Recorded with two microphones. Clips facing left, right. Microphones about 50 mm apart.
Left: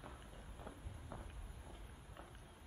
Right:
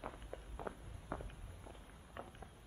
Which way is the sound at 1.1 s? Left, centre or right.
Right.